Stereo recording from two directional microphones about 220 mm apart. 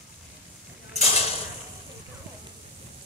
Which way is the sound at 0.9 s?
30° left (ahead or behind).